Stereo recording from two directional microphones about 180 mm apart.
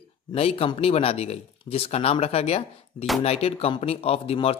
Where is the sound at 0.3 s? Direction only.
35° left (ahead or behind).